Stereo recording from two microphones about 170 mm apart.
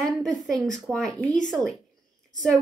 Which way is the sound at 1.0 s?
20° right (ahead or behind).